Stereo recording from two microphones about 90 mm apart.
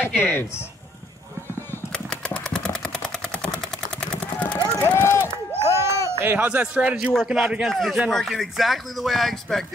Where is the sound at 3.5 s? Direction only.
15° left (ahead or behind).